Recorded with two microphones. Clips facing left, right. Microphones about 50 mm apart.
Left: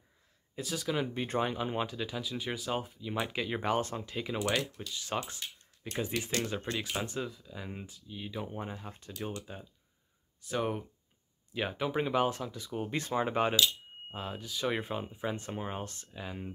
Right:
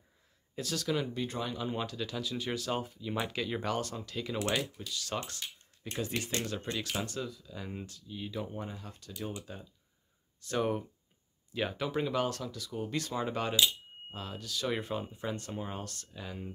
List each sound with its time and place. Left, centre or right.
0.6 s speech: centre
1.1 s speech: left
1.9 s speech: centre
8.5 s speech: left